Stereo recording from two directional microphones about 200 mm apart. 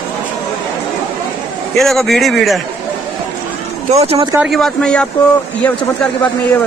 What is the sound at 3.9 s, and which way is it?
Speech, 30° right (ahead or behind).